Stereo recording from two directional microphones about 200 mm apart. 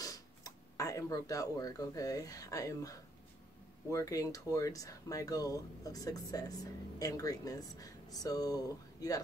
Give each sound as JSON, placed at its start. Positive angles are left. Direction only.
{"t": 0.0, "sound": "speech", "side_deg": 15}